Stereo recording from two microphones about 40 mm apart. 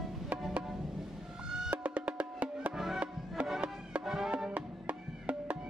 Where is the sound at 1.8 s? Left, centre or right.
Right.